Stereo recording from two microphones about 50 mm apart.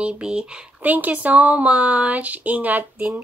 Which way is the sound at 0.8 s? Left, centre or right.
Right.